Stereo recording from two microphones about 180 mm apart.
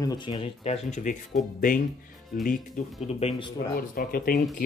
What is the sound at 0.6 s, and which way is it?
Speech, 40° left (ahead or behind).